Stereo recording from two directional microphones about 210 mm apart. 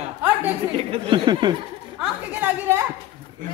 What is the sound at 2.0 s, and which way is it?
Speech, 10° right (ahead or behind).